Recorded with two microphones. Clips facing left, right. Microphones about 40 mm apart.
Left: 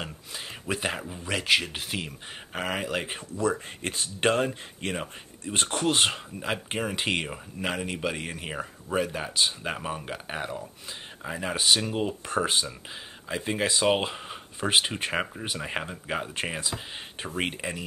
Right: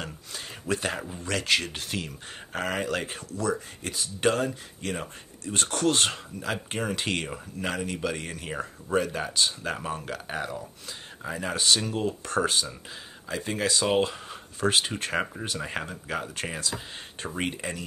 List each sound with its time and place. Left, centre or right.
0.0 s a sound: centre
1.0 s speech: centre; by 4.9 s left
4.9 s speech: centre